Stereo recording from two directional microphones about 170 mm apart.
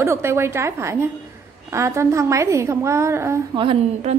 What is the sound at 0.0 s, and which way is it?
A woman's voice, 15° right (ahead or behind).